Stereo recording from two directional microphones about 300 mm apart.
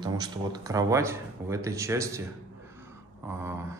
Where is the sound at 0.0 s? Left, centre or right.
Centre.